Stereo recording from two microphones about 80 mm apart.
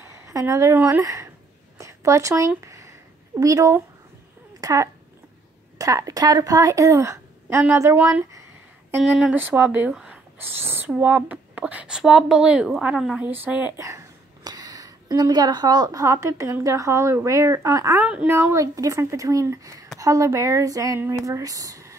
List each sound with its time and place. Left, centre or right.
0.0 s a sound: right
1.0 s a woman's voice: right
2.6 s a sound: right
3.3 s a woman's voice: right
9.3 s a woman's voice: right
13.7 s speech: right
14.4 s a woman's voice: right
18.2 s a woman's voice: right